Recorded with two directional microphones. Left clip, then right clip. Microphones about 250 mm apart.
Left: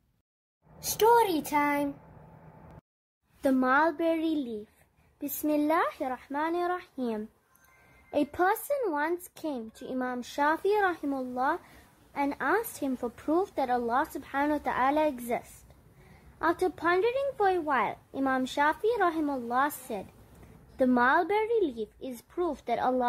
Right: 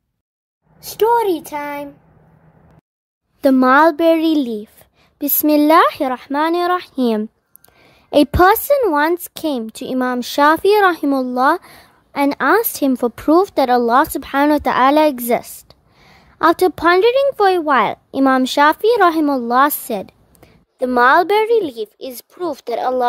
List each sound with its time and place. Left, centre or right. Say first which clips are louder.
0.7 s a woman's voice: right 8 dB; right
3.3 s speech: right 14 dB; right